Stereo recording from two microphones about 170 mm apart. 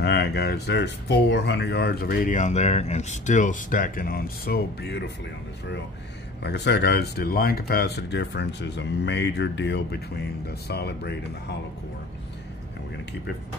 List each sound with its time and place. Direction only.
0.0 s speech: 75° left (ahead or behind)
6.4 s speech: 80° left